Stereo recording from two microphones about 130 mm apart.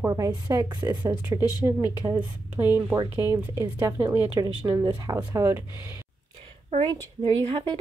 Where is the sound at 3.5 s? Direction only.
20° right (ahead or behind).